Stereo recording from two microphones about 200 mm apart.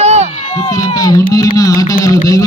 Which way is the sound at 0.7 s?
15° left (ahead or behind).